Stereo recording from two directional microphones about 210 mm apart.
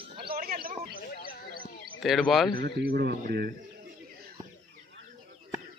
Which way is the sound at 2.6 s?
45° right (ahead or behind).